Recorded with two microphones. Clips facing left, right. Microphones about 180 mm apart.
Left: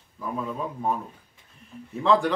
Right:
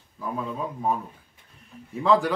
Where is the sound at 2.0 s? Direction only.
Centre (ahead or behind).